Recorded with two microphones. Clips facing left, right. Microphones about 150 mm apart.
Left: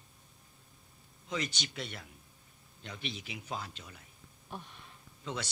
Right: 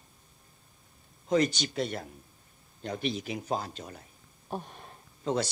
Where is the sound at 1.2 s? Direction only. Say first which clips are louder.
Right 12 dB; 45° right (ahead or behind).